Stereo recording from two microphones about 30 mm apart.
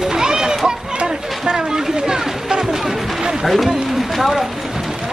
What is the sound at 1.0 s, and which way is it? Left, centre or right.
Chatter, right.